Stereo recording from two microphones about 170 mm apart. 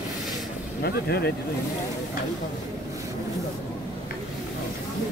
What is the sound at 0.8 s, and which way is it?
Speech, 70° left (ahead or behind).